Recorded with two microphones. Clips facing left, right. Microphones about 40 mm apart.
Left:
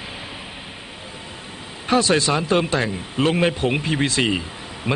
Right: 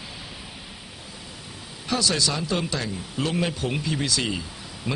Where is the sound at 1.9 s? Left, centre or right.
Left.